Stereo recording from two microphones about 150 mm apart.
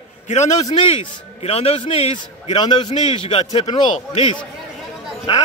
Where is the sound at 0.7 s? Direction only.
35° left (ahead or behind).